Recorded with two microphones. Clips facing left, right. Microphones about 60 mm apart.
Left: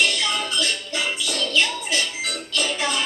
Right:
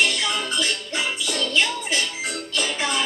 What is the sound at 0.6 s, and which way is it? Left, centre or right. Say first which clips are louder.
Music: even; right.